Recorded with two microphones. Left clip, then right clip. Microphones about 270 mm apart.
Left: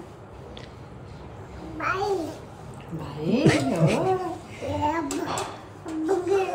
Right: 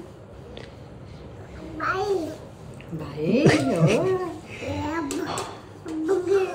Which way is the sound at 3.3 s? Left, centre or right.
Centre.